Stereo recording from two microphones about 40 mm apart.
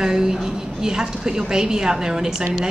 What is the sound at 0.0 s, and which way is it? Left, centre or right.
A woman's voice, centre.